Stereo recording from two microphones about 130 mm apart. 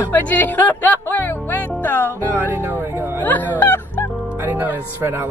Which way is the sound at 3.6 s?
15° left (ahead or behind).